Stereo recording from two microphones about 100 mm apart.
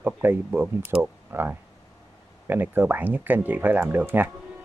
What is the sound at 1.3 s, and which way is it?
Speech, 20° right (ahead or behind).